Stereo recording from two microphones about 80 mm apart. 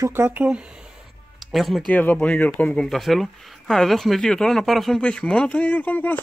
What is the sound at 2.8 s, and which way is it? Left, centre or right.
Speech, centre.